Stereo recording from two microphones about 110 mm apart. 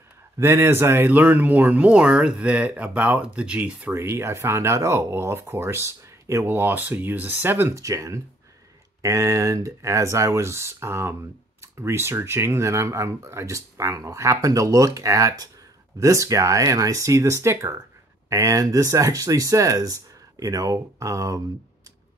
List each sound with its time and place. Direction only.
0.4 s speech: 25° right (ahead or behind)
3.9 s speech: 25° right (ahead or behind)